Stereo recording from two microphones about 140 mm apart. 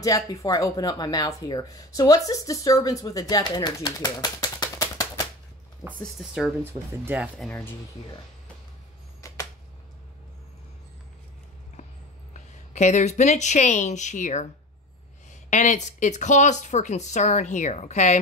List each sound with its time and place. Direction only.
0.0 s speech: 25° left (ahead or behind)
5.9 s speech: centre (ahead or behind)
6.6 s speech: 15° right (ahead or behind)
7.3 s speech: 10° left (ahead or behind)
12.4 s speech: 55° left (ahead or behind)
15.5 s speech: 60° left (ahead or behind)